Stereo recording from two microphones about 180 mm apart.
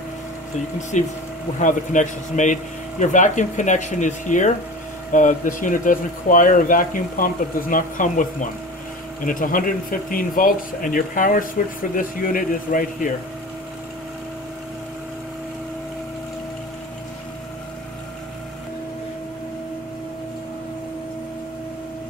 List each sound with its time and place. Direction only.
0.9 s a man's voice: 40° left (ahead or behind)